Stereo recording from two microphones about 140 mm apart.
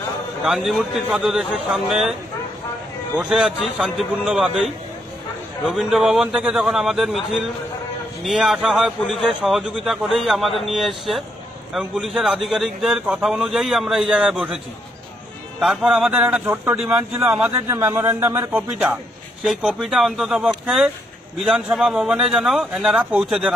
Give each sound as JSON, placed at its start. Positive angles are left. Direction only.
{"t": 0.4, "sound": "a man's voice", "side_deg": 0}
{"t": 3.2, "sound": "a man's voice", "side_deg": -5}
{"t": 5.7, "sound": "a man's voice", "side_deg": 0}
{"t": 8.2, "sound": "a man's voice", "side_deg": 0}
{"t": 15.6, "sound": "a man's voice", "side_deg": -5}
{"t": 19.4, "sound": "a man's voice", "side_deg": 0}